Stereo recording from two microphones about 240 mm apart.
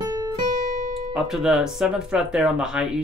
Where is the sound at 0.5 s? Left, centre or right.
Right.